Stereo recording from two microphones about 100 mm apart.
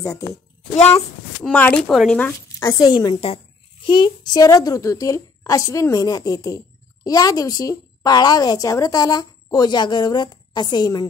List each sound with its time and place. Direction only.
0.0 s a woman's voice: 30° left (ahead or behind)
0.7 s a child's voice: 90° left
1.4 s speech: 15° left (ahead or behind)
2.6 s a woman's voice: 40° left (ahead or behind)